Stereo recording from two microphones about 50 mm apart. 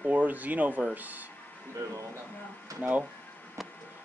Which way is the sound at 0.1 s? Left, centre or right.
Right.